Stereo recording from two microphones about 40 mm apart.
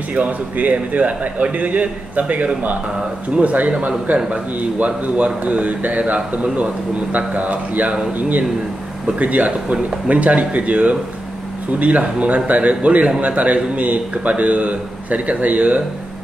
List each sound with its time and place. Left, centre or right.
0.1 s speech: right